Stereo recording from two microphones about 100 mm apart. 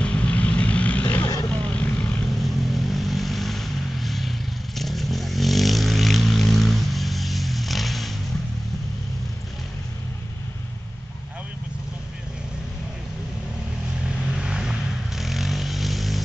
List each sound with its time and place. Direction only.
0.0 s vehicle: 10° left (ahead or behind)
1.2 s vehicle: 40° left (ahead or behind)
1.5 s vehicle: 10° left (ahead or behind)
2.4 s vehicle: centre (ahead or behind)
14.0 s vehicle: 10° right (ahead or behind)